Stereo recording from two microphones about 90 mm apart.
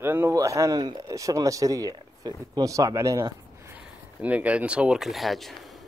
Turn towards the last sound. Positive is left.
turn(degrees=0)  # may be behind; listen again after turning